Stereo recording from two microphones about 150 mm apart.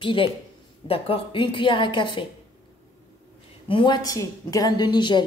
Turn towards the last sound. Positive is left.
turn(degrees=30)  # may be behind; listen again after turning